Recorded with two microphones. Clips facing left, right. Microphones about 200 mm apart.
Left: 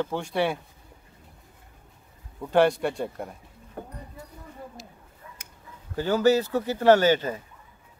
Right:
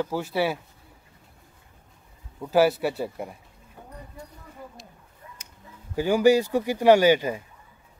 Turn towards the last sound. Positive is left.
turn(degrees=-10)  # may be behind; listen again after turning